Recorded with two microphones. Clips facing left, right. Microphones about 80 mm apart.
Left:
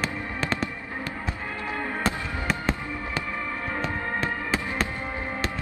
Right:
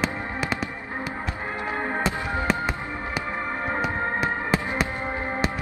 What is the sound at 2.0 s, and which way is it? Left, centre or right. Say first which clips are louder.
Music: right 2 dB; right.